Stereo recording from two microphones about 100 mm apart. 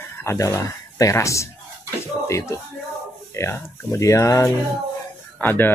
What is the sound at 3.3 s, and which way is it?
Speech, 25° left (ahead or behind).